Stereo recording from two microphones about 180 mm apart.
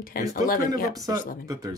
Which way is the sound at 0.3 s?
50° left (ahead or behind).